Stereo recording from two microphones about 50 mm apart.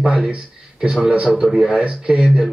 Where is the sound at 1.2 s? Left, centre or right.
Centre.